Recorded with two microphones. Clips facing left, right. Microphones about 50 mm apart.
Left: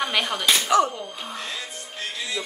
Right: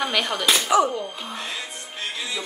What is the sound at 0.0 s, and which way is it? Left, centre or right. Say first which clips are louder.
Speech: right 1 dB; centre.